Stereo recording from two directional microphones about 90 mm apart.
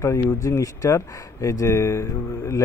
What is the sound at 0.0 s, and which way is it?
Speech, 35° left (ahead or behind).